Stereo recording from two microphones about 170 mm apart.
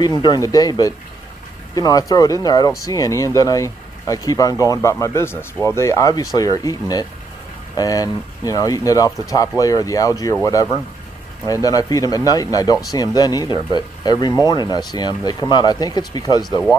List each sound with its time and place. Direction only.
0.0 s speech: 25° left (ahead or behind)